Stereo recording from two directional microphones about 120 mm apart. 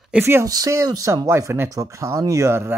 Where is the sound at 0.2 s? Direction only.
20° right (ahead or behind).